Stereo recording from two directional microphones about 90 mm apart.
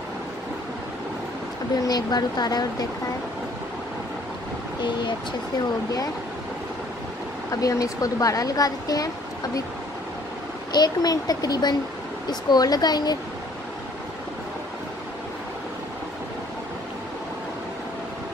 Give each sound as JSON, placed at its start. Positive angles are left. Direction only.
{"t": 1.8, "sound": "speech", "side_deg": 45}
{"t": 7.6, "sound": "speech", "side_deg": 40}
{"t": 10.7, "sound": "speech", "side_deg": 50}